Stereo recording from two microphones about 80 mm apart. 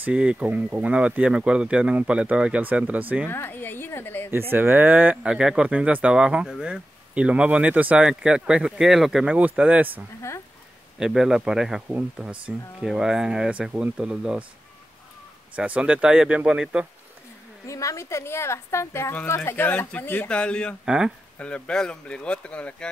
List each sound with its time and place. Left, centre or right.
0.0 s speech: centre
3.3 s speech: left
4.3 s speech: right
5.1 s speech: centre
11.0 s speech: centre
11.9 s speech: centre
15.5 s speech: centre
17.6 s a woman's voice: left; by 20.7 s centre
20.8 s speech: centre
21.4 s speech: centre